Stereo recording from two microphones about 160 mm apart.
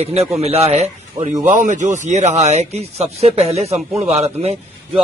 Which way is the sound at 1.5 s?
50° right (ahead or behind).